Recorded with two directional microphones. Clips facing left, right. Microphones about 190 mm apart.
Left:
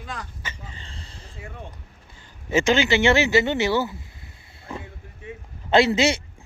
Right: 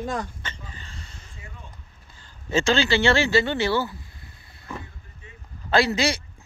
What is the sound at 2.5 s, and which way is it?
Speech, 15° left (ahead or behind).